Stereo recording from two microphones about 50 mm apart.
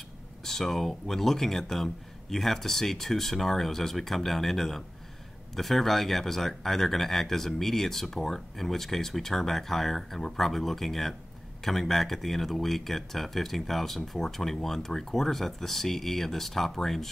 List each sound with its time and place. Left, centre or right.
0.4 s speech: centre